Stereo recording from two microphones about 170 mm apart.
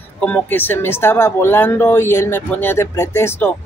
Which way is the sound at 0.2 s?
10° left (ahead or behind).